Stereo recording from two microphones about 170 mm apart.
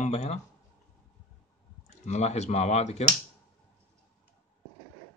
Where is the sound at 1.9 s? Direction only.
45° left (ahead or behind).